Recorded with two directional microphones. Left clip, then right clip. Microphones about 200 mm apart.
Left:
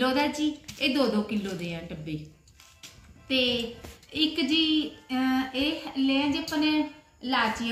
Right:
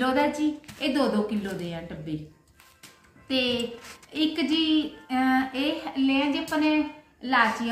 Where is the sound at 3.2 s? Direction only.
5° right (ahead or behind).